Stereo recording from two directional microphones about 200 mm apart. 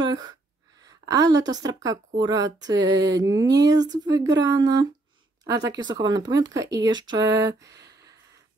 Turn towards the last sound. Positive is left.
turn(degrees=-20)  # may be behind; listen again after turning